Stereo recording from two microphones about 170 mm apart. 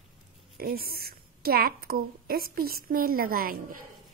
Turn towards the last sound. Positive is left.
turn(degrees=-60)  # may be behind; listen again after turning